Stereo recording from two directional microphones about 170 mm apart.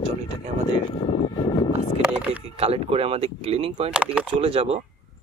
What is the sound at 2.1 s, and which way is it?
Speech, 5° right (ahead or behind).